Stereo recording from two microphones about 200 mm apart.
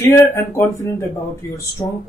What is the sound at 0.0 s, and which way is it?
Speech, 15° left (ahead or behind).